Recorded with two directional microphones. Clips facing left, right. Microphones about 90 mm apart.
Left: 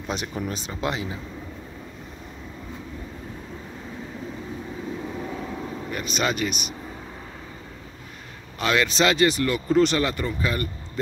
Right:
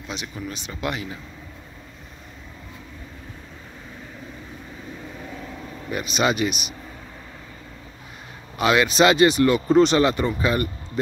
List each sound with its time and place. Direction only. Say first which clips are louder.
0.1 s speech: left 3 dB; 45° left (ahead or behind); by 1.1 s 25° left (ahead or behind)
5.2 s vehicle: left 4 dB; 20° left (ahead or behind)
5.9 s speech: right 4 dB; 10° right (ahead or behind)
8.5 s speech: right 4 dB; 15° right (ahead or behind)